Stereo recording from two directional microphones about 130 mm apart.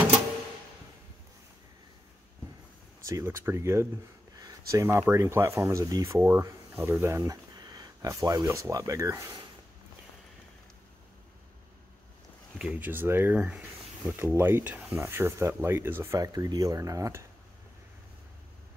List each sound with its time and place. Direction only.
3.1 s speech: 20° right (ahead or behind)
4.4 s a sound: 25° right (ahead or behind)
5.1 s speech: 20° right (ahead or behind)
12.5 s speech: 10° right (ahead or behind); by 17.2 s 25° right (ahead or behind)